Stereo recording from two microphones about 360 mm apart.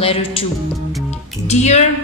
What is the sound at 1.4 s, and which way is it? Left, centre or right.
Speech, centre.